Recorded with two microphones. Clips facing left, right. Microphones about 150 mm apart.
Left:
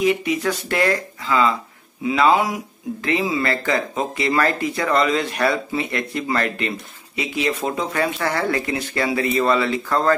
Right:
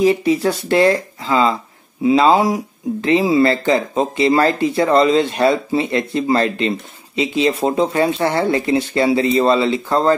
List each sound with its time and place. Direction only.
0.0 s speech: 35° right (ahead or behind)